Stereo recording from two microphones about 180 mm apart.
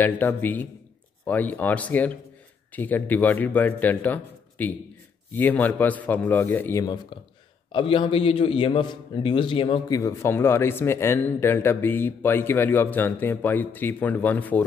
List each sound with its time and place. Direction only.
0.0 s a man's voice: 10° left (ahead or behind)
7.7 s a man's voice: 30° left (ahead or behind)
9.9 s a man's voice: 15° left (ahead or behind)